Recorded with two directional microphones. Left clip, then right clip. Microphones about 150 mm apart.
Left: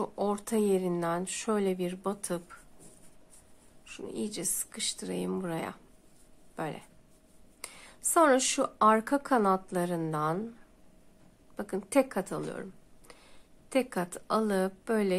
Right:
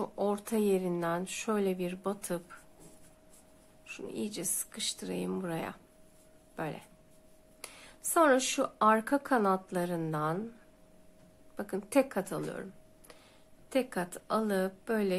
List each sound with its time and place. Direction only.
0.0 s speech: 15° left (ahead or behind)
3.8 s speech: 15° left (ahead or behind)
11.5 s speech: 15° left (ahead or behind)
13.7 s speech: 20° left (ahead or behind)